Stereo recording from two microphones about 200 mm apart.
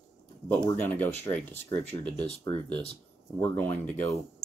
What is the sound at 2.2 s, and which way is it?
Speech, 30° left (ahead or behind).